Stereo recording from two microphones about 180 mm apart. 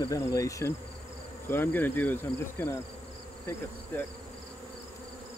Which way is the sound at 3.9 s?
10° left (ahead or behind).